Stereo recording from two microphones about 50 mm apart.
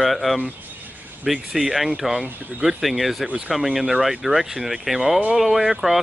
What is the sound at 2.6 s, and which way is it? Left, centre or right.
Speech, centre.